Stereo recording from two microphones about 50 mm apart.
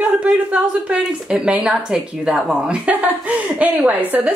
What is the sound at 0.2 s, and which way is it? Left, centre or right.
A woman's voice, right.